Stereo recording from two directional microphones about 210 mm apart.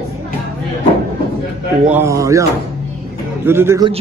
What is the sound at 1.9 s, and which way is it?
Speech, 10° right (ahead or behind).